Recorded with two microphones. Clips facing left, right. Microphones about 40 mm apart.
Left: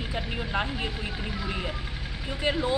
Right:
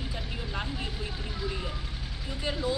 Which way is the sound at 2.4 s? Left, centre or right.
Left.